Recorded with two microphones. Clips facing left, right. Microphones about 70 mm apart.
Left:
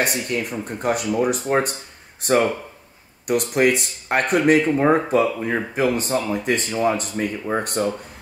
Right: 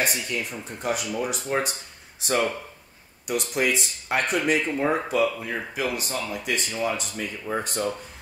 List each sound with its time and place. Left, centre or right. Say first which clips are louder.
0.0 s speech: left 4 dB; left
5.1 s speech: left 5 dB; left
6.7 s speech: left 7 dB; left
7.4 s speech: left 1 dB; left